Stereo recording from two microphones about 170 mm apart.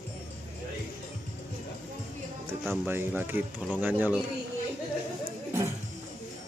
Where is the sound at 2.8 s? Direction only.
10° right (ahead or behind).